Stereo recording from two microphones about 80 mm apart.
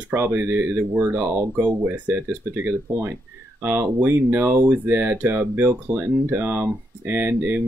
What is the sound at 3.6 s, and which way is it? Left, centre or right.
Speech, right.